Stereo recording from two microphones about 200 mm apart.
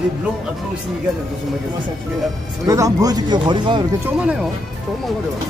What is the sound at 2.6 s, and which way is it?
Speech, 15° right (ahead or behind).